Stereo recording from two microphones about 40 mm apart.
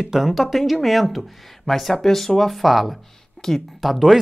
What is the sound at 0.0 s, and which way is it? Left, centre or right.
Speech, centre.